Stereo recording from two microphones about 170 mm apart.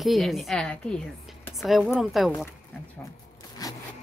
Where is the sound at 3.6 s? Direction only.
20° left (ahead or behind).